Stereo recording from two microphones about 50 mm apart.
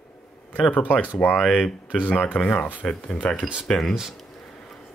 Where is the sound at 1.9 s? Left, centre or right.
Left.